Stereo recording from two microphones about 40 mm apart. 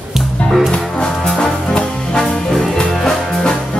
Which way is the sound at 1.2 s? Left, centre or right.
Centre.